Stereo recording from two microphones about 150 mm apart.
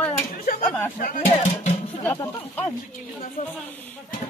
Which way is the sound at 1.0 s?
65° left (ahead or behind).